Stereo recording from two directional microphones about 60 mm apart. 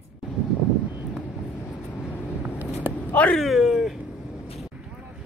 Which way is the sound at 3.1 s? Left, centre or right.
Left.